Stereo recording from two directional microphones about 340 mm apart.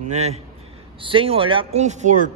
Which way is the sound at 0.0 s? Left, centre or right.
Centre.